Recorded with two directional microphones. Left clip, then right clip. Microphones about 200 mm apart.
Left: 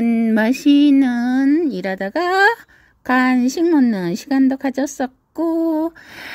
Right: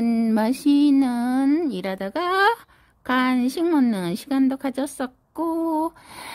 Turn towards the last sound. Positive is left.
turn(degrees=10)  # may be behind; listen again after turning